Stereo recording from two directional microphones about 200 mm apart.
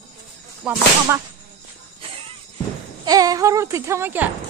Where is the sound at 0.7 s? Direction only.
5° right (ahead or behind).